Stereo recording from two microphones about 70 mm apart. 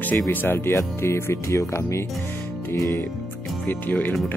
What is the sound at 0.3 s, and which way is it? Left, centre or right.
Speech, left.